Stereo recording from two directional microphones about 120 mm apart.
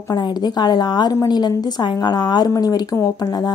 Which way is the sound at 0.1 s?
35° left (ahead or behind).